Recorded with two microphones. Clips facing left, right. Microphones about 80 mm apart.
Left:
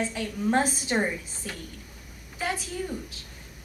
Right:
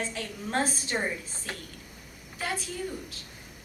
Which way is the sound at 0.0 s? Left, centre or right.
Centre.